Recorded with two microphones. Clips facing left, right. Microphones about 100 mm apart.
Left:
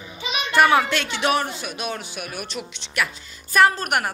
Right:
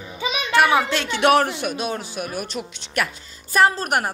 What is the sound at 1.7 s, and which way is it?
A woman's voice, 35° right (ahead or behind).